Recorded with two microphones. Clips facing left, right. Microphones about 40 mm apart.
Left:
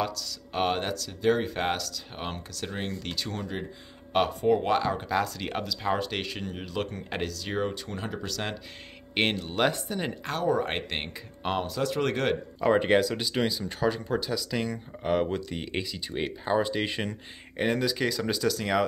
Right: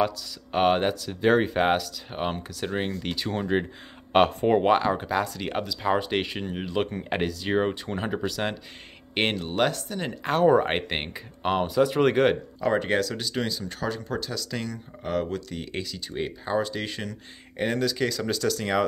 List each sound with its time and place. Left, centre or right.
0.0 s speech: centre
4.1 s speech: right; by 9.4 s centre
9.7 s speech: centre
10.5 s speech: right
12.5 s speech: centre
17.6 s speech: centre